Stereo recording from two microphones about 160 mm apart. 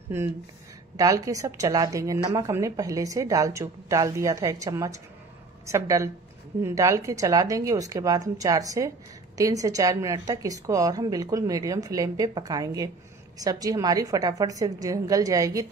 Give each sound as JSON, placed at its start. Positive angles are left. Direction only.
{"t": 0.9, "sound": "a woman's voice", "side_deg": -20}